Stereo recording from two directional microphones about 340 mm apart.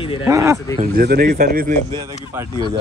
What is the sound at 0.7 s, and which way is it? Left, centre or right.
Speech, right.